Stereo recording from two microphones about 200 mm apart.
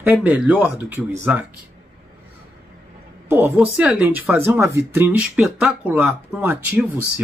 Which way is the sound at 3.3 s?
10° right (ahead or behind).